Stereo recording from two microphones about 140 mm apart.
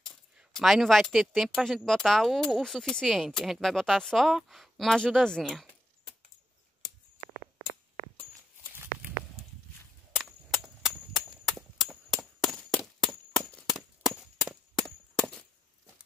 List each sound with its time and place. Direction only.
0.0 s speech: centre (ahead or behind)
10.1 s cap gun: centre (ahead or behind)
15.1 s chop: centre (ahead or behind)